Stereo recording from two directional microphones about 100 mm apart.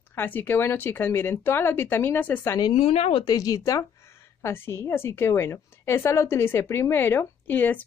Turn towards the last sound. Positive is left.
turn(degrees=20)  # may be behind; listen again after turning